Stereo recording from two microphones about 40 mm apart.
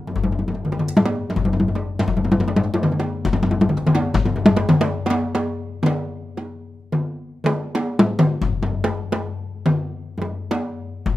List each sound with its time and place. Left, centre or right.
0.0 s music: centre
0.7 s drum: right
1.0 s music: centre
4.1 s music: centre
8.8 s drum: right
9.6 s music: centre
11.1 s music: centre